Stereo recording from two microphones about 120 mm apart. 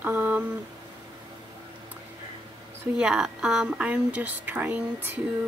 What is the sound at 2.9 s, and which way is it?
A woman's voice, 5° right (ahead or behind).